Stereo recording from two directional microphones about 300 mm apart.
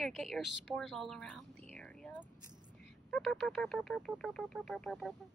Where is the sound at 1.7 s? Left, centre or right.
Centre.